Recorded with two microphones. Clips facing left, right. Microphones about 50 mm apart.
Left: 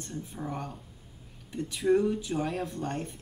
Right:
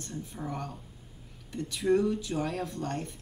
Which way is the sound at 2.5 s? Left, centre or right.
Centre.